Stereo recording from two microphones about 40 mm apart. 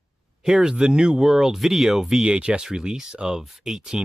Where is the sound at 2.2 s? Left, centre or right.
Right.